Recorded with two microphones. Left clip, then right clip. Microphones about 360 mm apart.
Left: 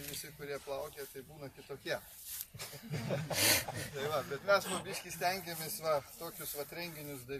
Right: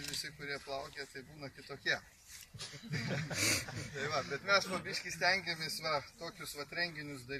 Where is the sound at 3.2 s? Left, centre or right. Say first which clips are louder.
Left 4 dB; left.